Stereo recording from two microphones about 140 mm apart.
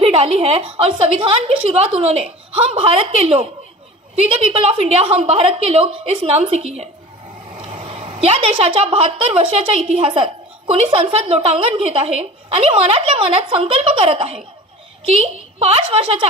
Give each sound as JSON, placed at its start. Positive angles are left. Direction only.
{"t": 0.0, "sound": "a woman's voice", "side_deg": -45}
{"t": 15.6, "sound": "a woman's voice", "side_deg": -45}